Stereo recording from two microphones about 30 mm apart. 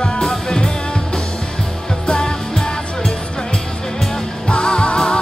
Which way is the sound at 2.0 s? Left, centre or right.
Left.